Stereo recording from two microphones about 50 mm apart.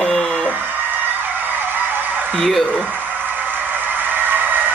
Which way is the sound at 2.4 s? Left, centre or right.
Centre.